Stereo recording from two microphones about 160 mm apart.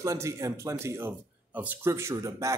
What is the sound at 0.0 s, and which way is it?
A man's voice, 20° right (ahead or behind).